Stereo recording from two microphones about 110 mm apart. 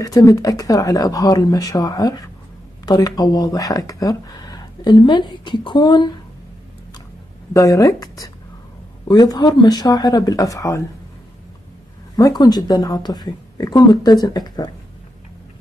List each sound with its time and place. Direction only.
0.0 s speech: 30° left (ahead or behind)
7.5 s speech: 30° left (ahead or behind)
12.2 s speech: 35° left (ahead or behind)